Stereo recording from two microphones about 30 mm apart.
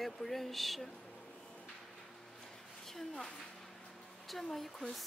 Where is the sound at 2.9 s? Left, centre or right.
Centre.